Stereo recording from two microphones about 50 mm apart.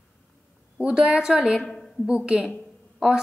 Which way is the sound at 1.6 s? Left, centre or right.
Centre.